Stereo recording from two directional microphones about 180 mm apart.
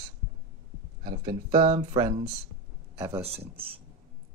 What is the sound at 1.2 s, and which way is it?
Speech, 20° right (ahead or behind).